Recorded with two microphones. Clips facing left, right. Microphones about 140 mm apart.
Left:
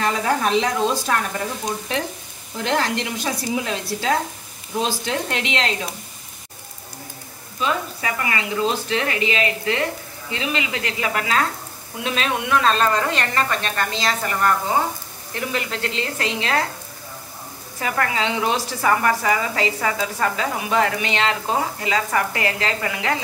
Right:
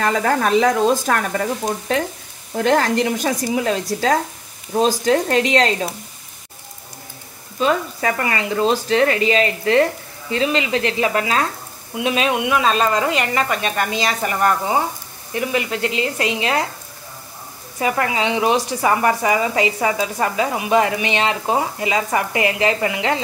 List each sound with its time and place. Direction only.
0.0 s a woman's voice: 50° right (ahead or behind)
7.6 s a woman's voice: 40° right (ahead or behind); by 11.4 s 25° right (ahead or behind)
12.0 s a woman's voice: 15° right (ahead or behind)
17.7 s a woman's voice: 20° right (ahead or behind)